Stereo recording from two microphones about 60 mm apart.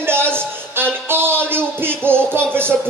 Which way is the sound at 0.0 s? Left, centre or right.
Right.